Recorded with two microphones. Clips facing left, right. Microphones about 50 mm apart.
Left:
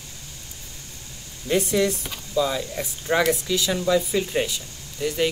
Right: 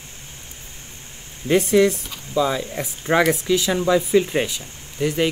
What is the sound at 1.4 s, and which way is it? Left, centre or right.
Speech, right.